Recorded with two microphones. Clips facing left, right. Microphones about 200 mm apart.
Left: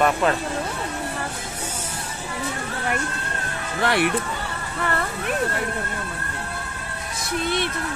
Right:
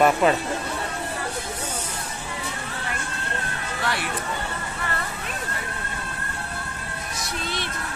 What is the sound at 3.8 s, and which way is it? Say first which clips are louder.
Speech: left 8 dB; 60° left (ahead or behind).